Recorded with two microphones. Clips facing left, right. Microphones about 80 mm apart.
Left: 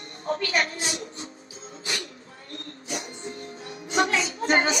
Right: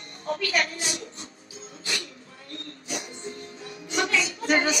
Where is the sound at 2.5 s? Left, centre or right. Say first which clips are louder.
Left 1 dB; left.